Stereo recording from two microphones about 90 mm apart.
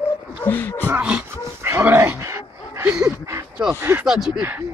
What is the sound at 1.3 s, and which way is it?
Dog, 30° right (ahead or behind).